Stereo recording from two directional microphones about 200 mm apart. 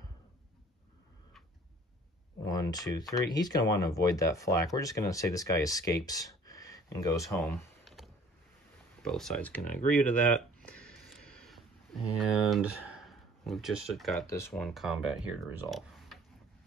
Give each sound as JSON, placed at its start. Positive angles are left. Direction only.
{"t": 2.4, "sound": "speech", "side_deg": 20}
{"t": 7.3, "sound": "computer keyboard", "side_deg": 5}
{"t": 9.0, "sound": "speech", "side_deg": 0}
{"t": 10.0, "sound": "a sound", "side_deg": 5}
{"t": 12.3, "sound": "speech", "side_deg": 0}
{"t": 14.2, "sound": "speech", "side_deg": 15}
{"t": 14.5, "sound": "speech", "side_deg": 0}